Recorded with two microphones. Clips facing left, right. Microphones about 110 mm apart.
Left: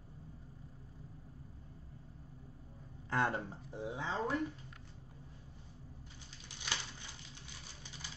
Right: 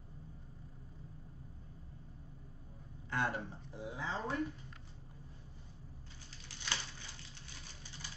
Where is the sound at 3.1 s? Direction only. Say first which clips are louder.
Left 2 dB; 30° left (ahead or behind).